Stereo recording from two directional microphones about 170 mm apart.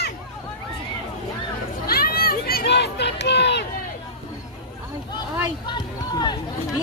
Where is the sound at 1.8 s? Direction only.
60° left (ahead or behind); by 3.7 s 80° left.